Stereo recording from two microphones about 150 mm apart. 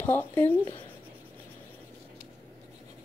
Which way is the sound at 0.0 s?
15° left (ahead or behind).